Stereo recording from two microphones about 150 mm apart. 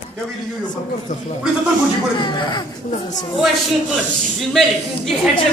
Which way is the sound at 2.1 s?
30° left (ahead or behind).